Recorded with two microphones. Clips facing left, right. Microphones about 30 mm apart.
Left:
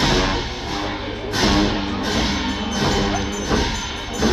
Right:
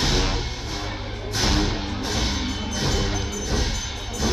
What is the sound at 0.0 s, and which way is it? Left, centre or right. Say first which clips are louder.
Music: left 5 dB; left.